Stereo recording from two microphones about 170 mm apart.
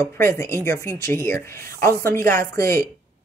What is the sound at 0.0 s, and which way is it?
Speech, 15° left (ahead or behind).